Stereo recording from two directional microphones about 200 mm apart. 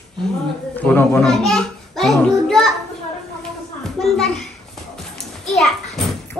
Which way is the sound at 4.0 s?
Centre (ahead or behind).